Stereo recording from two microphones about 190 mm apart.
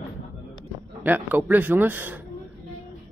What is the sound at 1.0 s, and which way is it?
A man's voice, 10° right (ahead or behind).